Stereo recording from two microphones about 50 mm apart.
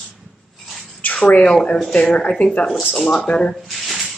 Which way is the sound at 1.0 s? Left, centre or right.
Left.